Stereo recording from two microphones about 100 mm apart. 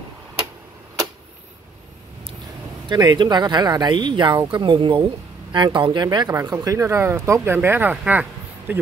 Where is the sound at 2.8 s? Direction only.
45° right (ahead or behind).